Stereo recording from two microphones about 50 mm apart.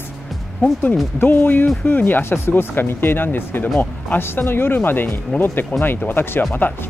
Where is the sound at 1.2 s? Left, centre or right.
Left.